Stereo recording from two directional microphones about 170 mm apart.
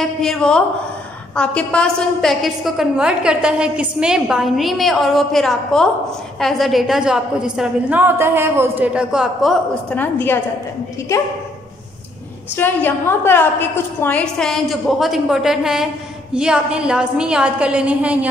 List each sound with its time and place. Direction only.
0.0 s a woman's voice: centre (ahead or behind); by 11.2 s 20° left (ahead or behind)
12.5 s a woman's voice: 10° left (ahead or behind); by 18.2 s 5° right (ahead or behind)